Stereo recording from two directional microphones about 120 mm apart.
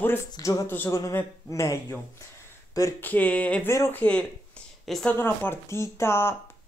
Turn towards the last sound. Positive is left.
turn(degrees=20)  # may be behind; listen again after turning